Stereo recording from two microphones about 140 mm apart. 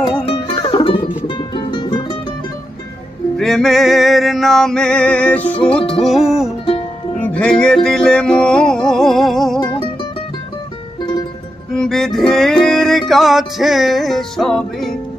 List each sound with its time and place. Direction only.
0.2 s music: 40° left (ahead or behind)
3.3 s music: centre (ahead or behind)
7.2 s music: 10° left (ahead or behind)
9.6 s music: 35° left (ahead or behind)
11.0 s music: 30° left (ahead or behind)
11.7 s music: 5° left (ahead or behind)